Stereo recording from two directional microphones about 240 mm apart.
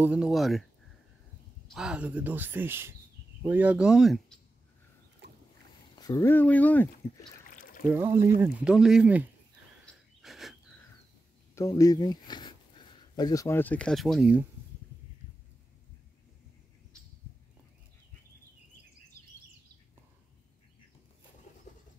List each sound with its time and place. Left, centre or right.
0.0 s speech: centre
1.7 s speech: centre
5.2 s boat: right
5.9 s speech: centre
7.4 s a sound: left
7.9 s speech: centre
9.8 s a sound: centre
11.5 s speech: centre